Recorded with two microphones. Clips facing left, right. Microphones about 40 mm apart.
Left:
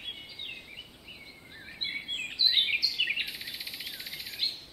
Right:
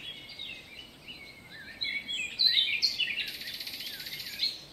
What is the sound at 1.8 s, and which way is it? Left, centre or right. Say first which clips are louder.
Bird vocalization: right 1 dB; centre.